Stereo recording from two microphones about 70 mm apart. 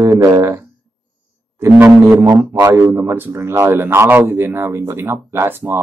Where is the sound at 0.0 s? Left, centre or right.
Right.